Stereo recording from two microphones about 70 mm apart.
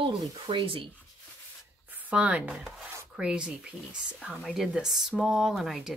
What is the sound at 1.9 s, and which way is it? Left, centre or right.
Speech, right.